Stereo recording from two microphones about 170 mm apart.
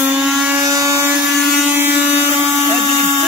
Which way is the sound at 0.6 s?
20° right (ahead or behind).